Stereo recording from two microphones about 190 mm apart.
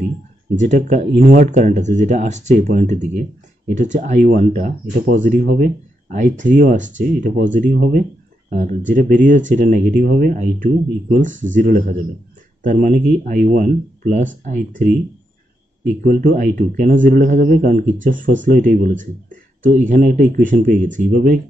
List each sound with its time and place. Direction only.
0.6 s speech: 40° right (ahead or behind)
16.0 s speech: 45° right (ahead or behind)